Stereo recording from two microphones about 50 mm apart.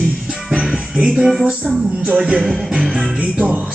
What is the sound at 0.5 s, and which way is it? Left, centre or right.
Music, centre.